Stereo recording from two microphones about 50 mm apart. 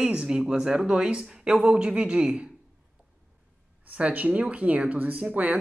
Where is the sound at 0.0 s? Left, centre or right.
Right.